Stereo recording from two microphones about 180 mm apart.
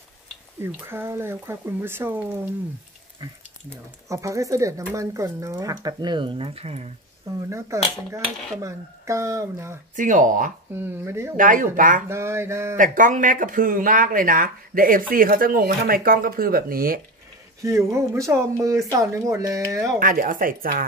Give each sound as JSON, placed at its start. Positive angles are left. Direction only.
{"t": 0.6, "sound": "speech", "side_deg": -15}
{"t": 4.1, "sound": "speech", "side_deg": -15}
{"t": 7.2, "sound": "speech", "side_deg": -15}
{"t": 9.9, "sound": "speech", "side_deg": -45}
{"t": 10.7, "sound": "speech", "side_deg": -15}
{"t": 11.3, "sound": "speech", "side_deg": -50}
{"t": 12.1, "sound": "speech", "side_deg": -15}
{"t": 12.7, "sound": "speech", "side_deg": -45}
{"t": 17.6, "sound": "speech", "side_deg": -15}
{"t": 20.0, "sound": "speech", "side_deg": -50}